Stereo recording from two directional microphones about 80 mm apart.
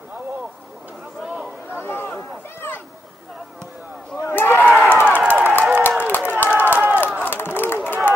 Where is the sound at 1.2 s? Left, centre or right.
Centre.